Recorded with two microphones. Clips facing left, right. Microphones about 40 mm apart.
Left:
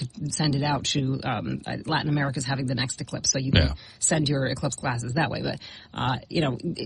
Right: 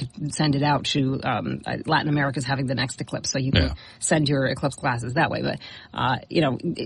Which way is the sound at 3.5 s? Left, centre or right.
Centre.